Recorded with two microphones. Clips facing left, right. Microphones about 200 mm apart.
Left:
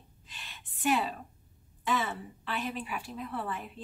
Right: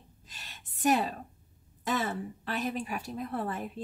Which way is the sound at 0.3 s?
40° right (ahead or behind).